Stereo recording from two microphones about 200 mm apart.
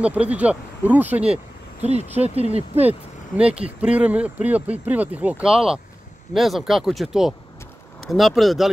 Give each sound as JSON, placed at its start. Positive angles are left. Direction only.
{"t": 0.0, "sound": "speech", "side_deg": -5}
{"t": 1.8, "sound": "speech", "side_deg": -30}
{"t": 3.3, "sound": "speech", "side_deg": -5}